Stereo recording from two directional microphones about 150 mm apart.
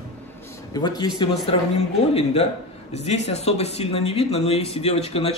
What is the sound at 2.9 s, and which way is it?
A man's voice, 45° left (ahead or behind).